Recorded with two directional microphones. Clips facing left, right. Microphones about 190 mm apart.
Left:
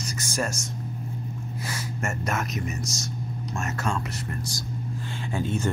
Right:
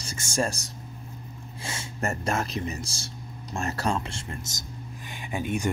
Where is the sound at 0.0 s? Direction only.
25° right (ahead or behind).